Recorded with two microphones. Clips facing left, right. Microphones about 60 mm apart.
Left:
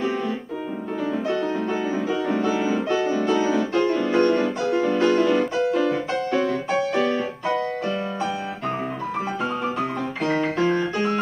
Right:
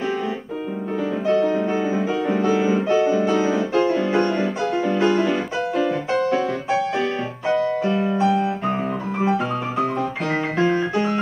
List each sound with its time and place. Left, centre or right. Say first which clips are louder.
1.5 s music: right 3 dB; centre
2.4 s music: right 3 dB; centre
10.2 s guitar: left 1 dB; right